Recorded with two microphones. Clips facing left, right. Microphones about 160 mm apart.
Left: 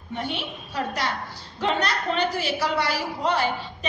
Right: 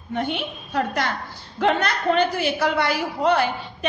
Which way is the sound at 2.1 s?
50° right (ahead or behind).